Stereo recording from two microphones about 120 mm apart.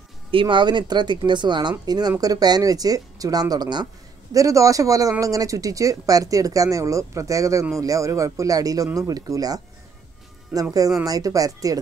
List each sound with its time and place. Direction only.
0.3 s speech: 45° right (ahead or behind); by 11.8 s 30° right (ahead or behind)